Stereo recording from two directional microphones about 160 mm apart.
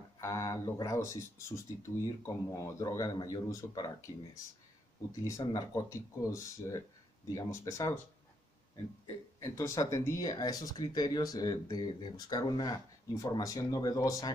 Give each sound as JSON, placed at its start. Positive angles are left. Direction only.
{"t": 0.2, "sound": "speech", "side_deg": 20}
{"t": 5.2, "sound": "speech", "side_deg": 20}
{"t": 9.0, "sound": "speech", "side_deg": 20}